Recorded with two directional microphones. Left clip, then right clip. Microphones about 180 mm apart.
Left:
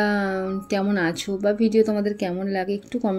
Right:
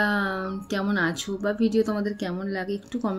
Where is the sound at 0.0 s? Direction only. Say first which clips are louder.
Left 2 dB; 15° left (ahead or behind).